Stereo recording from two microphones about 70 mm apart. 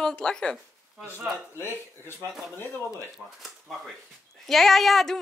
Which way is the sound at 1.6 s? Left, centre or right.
Left.